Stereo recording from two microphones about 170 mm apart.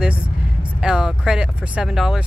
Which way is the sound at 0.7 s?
5° right (ahead or behind).